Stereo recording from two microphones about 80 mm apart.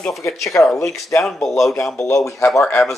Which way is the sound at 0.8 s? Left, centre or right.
Left.